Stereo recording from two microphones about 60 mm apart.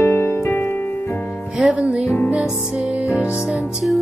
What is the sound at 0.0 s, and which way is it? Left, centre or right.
Music, left.